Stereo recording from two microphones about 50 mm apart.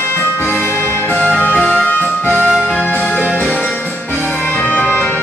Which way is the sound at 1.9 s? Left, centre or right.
Left.